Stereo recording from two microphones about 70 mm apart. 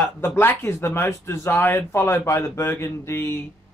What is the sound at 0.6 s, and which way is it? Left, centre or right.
Speech, left.